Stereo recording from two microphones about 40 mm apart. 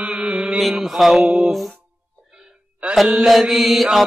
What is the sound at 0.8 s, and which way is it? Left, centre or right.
Mantra, centre.